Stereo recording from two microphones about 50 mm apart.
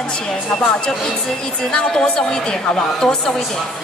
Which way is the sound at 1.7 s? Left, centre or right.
Centre.